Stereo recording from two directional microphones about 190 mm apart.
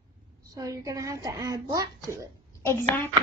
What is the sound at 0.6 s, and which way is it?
A woman's voice, 15° right (ahead or behind).